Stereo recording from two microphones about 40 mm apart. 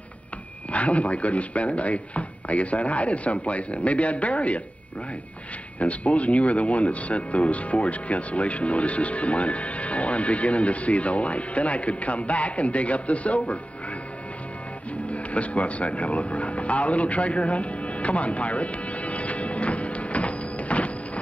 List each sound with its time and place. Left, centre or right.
0.7 s speech: left
5.8 s speech: left
15.0 s a sound: left